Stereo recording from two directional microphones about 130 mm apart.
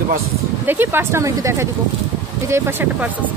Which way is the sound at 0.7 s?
15° right (ahead or behind).